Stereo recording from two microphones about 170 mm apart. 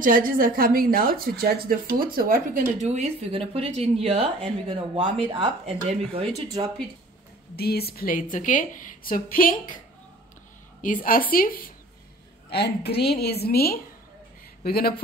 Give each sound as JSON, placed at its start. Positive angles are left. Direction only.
{"t": 0.0, "sound": "a woman's voice", "side_deg": -55}
{"t": 7.5, "sound": "a woman's voice", "side_deg": 65}
{"t": 10.8, "sound": "a woman's voice", "side_deg": 55}
{"t": 12.4, "sound": "a woman's voice", "side_deg": 75}